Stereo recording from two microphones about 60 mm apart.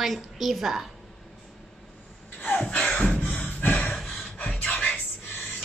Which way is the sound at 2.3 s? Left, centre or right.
Left.